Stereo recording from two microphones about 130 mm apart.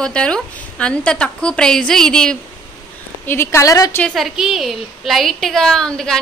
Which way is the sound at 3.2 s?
20° left (ahead or behind).